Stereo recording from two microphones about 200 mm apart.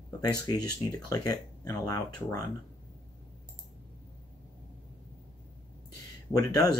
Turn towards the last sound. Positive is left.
turn(degrees=20)  # may be behind; listen again after turning